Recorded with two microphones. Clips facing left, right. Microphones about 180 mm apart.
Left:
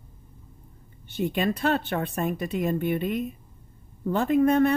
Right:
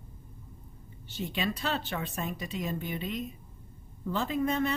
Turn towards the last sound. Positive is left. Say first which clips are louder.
# left 9 dB
turn(degrees=55)  # may be behind; listen again after turning